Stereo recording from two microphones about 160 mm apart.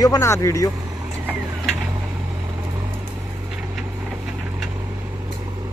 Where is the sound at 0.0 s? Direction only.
20° left (ahead or behind).